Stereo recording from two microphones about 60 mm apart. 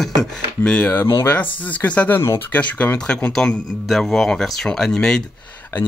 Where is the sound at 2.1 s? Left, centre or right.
Left.